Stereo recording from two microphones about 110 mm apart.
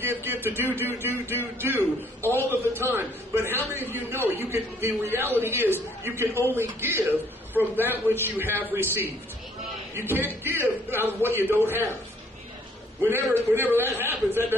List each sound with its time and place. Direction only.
0.0 s a man's voice: 20° right (ahead or behind)
2.7 s a sound: 20° right (ahead or behind)
3.7 s a man's voice: 20° right (ahead or behind)
13.1 s a man's voice: 20° right (ahead or behind)